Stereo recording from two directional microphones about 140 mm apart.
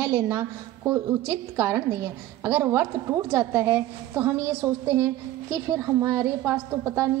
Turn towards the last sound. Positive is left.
turn(degrees=-20)  # may be behind; listen again after turning